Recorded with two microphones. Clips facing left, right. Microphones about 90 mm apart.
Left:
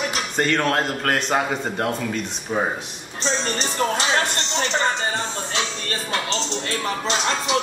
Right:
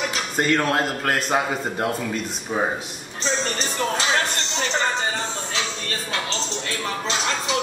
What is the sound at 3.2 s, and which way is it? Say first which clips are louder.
Music: left 1 dB; 30° left (ahead or behind).